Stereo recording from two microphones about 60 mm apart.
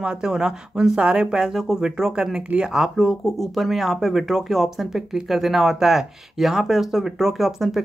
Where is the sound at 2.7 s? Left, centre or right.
Centre.